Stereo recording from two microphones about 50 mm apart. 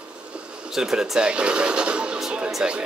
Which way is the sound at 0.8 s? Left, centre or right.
Centre.